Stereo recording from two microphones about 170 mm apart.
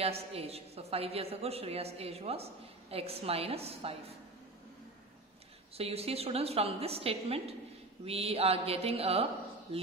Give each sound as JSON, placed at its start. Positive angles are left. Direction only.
{"t": 0.0, "sound": "a woman's voice", "side_deg": -35}
{"t": 5.8, "sound": "a woman's voice", "side_deg": -35}